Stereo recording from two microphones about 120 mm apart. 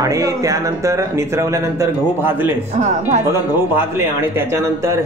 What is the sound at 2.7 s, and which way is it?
Speech, 80° right.